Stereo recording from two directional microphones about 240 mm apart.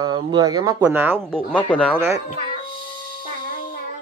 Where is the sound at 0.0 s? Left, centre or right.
Centre.